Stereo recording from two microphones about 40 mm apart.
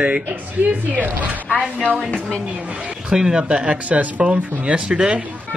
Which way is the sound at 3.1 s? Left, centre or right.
Centre.